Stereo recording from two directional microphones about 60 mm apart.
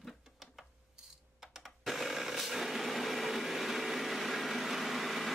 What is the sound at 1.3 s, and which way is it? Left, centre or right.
Blender, centre.